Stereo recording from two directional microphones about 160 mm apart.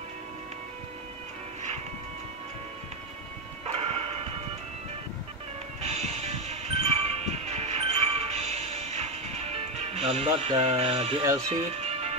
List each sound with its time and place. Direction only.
3.7 s music: 40° right (ahead or behind)
5.8 s music: 45° right (ahead or behind)
10.5 s speech: 40° right (ahead or behind)
11.4 s music: 40° right (ahead or behind)